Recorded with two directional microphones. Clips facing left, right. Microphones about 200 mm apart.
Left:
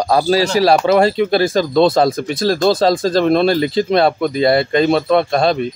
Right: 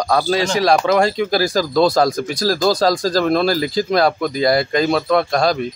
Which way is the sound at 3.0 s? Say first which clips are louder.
Left 3 dB; 25° left (ahead or behind).